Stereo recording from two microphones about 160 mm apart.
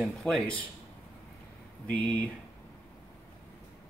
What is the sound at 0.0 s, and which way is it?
Speech, 5° left (ahead or behind).